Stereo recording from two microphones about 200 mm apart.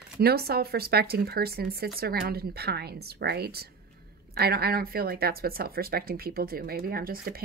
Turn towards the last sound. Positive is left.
turn(degrees=-50)  # may be behind; listen again after turning